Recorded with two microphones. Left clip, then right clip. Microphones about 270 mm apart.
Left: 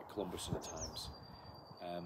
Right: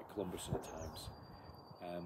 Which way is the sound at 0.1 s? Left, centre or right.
Centre.